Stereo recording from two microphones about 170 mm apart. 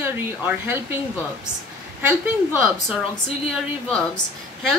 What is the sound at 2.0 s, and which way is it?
Speech, 10° right (ahead or behind).